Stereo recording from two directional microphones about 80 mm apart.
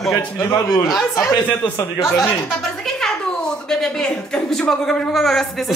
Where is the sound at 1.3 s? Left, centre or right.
Left.